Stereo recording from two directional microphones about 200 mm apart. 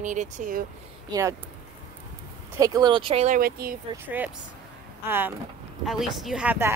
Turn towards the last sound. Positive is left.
turn(degrees=-10)  # may be behind; listen again after turning